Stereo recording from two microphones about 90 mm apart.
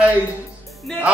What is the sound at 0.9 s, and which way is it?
Speech, 5° left (ahead or behind).